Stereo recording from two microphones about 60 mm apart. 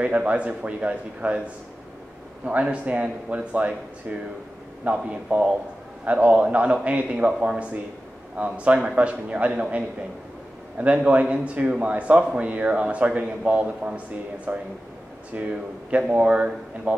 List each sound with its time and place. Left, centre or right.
0.0 s a man's voice: right